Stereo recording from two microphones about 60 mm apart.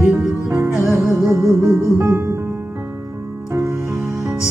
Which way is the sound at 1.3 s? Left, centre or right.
Right.